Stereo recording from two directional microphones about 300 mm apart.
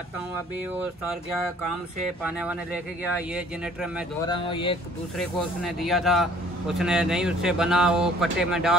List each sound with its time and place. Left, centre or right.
3.2 s speech: centre
4.4 s speech: centre
5.6 s speech: centre